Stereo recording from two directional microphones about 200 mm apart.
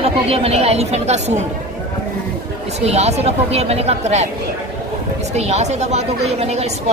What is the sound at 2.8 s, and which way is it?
A woman's voice, 30° right (ahead or behind).